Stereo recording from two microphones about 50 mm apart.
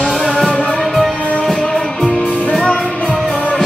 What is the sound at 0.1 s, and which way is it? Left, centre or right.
Music, centre.